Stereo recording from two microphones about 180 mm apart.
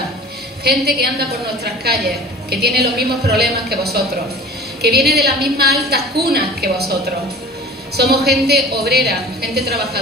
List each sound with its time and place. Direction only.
0.7 s a woman's voice: 60° right (ahead or behind)
7.9 s a woman's voice: 65° right (ahead or behind)